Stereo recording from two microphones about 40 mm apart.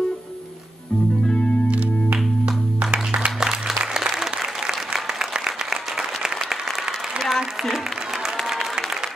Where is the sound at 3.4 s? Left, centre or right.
Centre.